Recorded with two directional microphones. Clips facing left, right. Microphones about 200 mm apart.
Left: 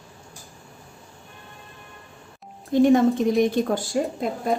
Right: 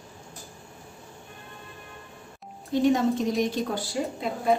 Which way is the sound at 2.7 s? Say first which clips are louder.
Left 5 dB; 55° left (ahead or behind).